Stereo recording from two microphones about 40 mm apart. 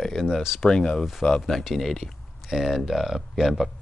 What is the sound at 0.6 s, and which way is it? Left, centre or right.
Speech, left.